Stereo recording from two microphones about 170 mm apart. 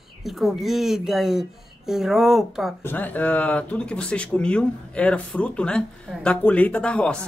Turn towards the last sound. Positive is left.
turn(degrees=5)  # may be behind; listen again after turning